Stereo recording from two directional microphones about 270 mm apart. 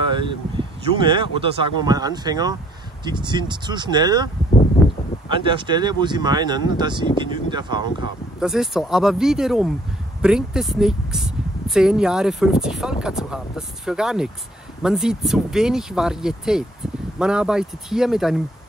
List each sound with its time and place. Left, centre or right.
0.0 s speech: centre
5.3 s speech: centre
8.4 s speech: centre